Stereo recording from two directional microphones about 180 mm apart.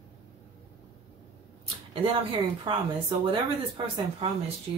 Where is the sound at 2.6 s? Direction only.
25° right (ahead or behind).